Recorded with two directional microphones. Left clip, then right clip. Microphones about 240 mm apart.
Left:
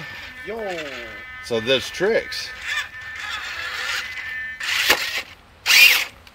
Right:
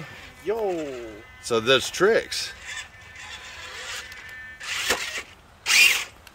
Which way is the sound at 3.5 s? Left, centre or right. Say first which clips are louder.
Left 9 dB; centre.